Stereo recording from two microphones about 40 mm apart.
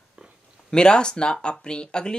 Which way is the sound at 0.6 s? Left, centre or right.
Left.